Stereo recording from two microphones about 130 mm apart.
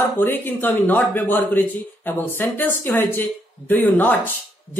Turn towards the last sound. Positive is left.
turn(degrees=15)  # may be behind; listen again after turning